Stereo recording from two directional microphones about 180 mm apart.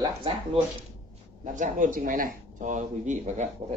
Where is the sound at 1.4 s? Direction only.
45° right (ahead or behind).